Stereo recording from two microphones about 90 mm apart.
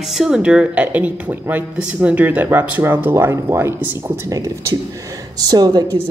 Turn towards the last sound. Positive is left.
turn(degrees=-45)  # may be behind; listen again after turning